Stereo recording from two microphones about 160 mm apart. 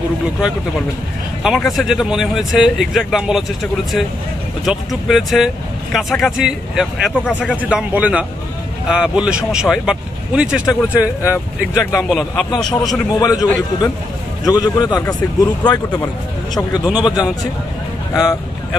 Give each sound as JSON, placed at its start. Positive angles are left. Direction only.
{"t": 1.4, "sound": "speech", "side_deg": 0}
{"t": 4.6, "sound": "speech", "side_deg": 0}
{"t": 11.8, "sound": "speech", "side_deg": 20}
{"t": 12.1, "sound": "speech", "side_deg": 5}
{"t": 13.2, "sound": "speech", "side_deg": 25}